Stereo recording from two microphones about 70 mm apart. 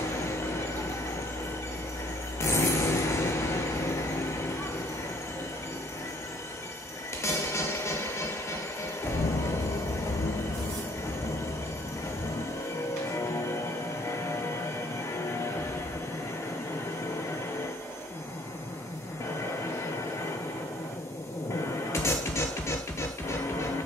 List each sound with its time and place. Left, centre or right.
2.4 s vehicle: left
7.2 s music: left
21.9 s music: left